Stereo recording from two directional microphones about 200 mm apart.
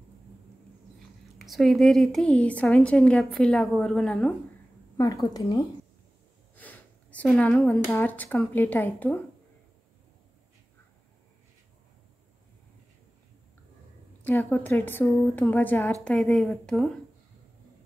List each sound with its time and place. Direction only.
0.9 s speech: centre (ahead or behind)
4.9 s a woman's voice: 15° left (ahead or behind)
6.5 s a sound: 10° left (ahead or behind)
7.9 s a woman's voice: 10° left (ahead or behind)
14.2 s a woman's voice: 10° left (ahead or behind)